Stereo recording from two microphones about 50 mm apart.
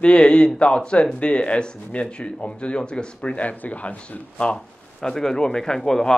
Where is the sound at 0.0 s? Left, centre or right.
Centre.